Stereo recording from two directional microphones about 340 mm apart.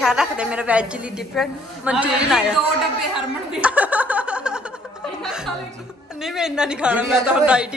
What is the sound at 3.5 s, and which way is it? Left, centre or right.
Chuckle, centre.